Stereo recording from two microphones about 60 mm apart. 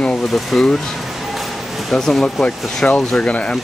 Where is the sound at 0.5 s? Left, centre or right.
Centre.